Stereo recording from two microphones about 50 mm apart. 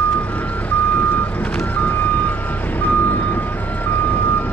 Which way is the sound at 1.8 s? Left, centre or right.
Left.